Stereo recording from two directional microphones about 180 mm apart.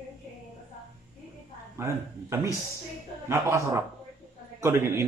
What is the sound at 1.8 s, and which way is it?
Speech, 15° right (ahead or behind).